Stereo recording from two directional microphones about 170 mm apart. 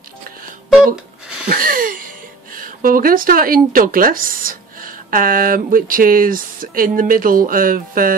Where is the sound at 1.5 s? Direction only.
55° right (ahead or behind).